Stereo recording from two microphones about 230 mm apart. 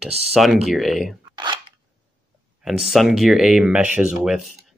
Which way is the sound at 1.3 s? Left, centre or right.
Centre.